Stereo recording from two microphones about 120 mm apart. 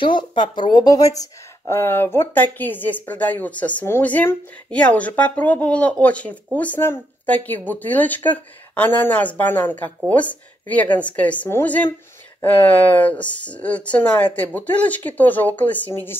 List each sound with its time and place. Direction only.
0.0 s speech: 40° left (ahead or behind)
1.8 s speech: 20° left (ahead or behind)